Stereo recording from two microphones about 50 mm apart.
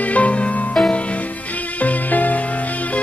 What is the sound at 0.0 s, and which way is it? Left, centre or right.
Music, left.